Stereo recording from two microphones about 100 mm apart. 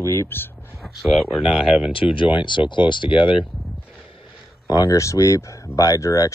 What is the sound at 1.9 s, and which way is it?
Speech, 60° left (ahead or behind).